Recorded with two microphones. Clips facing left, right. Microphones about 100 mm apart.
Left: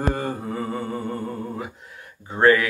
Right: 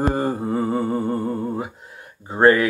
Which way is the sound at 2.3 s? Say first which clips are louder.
Right 2 dB; 30° right (ahead or behind).